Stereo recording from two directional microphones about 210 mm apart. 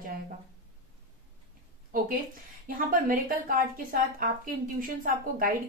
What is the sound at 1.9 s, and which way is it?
A woman's voice, 40° right (ahead or behind).